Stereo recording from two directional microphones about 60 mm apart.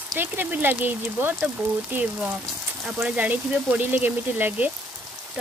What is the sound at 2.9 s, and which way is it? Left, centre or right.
Speech, right.